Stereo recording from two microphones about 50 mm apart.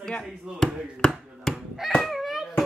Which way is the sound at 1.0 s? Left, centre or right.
Centre.